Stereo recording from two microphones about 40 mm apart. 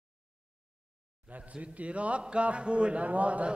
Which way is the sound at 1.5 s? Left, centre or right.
Right.